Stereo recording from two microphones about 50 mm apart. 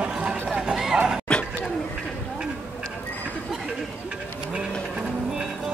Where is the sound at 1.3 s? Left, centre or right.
Centre.